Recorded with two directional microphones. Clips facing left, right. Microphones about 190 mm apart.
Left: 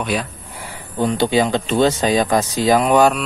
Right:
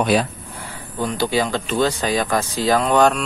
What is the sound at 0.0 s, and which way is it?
Speech, 35° right (ahead or behind).